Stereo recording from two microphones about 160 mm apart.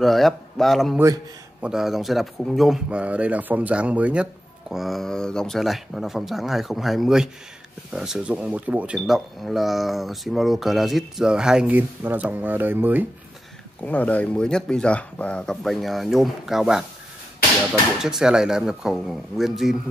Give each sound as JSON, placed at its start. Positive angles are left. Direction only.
{"t": 0.0, "sound": "speech", "side_deg": 0}
{"t": 0.9, "sound": "speech", "side_deg": -20}
{"t": 1.6, "sound": "speech", "side_deg": -5}
{"t": 13.8, "sound": "speech", "side_deg": 10}
{"t": 18.0, "sound": "speech", "side_deg": -5}